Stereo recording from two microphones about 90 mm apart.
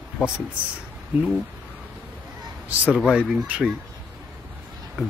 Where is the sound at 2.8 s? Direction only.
10° right (ahead or behind).